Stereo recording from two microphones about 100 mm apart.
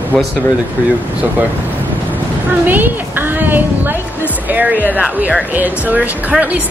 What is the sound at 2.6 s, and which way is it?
A woman's voice, 20° right (ahead or behind).